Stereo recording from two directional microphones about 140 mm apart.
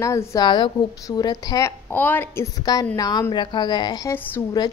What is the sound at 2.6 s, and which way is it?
A woman's voice, 25° left (ahead or behind).